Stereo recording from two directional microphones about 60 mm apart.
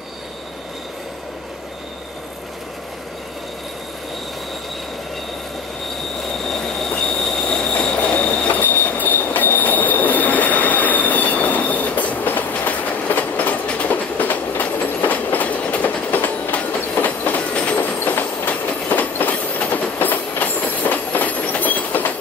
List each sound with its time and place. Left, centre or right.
6.5 s train: centre; by 22.1 s left